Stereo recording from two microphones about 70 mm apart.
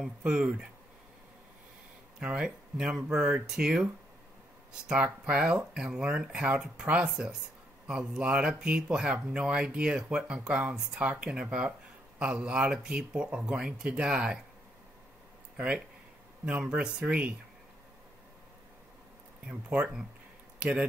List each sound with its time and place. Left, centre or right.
0.2 s speech: centre
2.1 s speech: centre
15.5 s speech: centre
20.5 s a sound: centre